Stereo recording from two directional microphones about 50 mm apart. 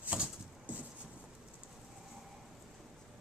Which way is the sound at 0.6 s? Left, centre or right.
Right.